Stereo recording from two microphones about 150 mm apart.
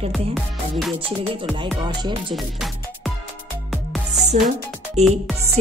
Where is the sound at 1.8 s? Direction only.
30° right (ahead or behind).